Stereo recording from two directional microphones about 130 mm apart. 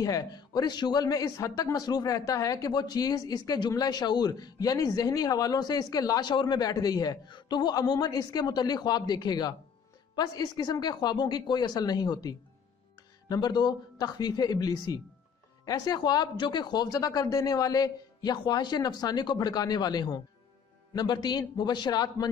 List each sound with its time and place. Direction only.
0.0 s a man's voice: 30° left (ahead or behind)